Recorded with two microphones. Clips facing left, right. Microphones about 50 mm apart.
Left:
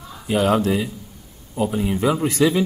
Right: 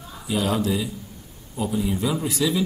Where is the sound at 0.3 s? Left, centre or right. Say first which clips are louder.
Left 5 dB; left.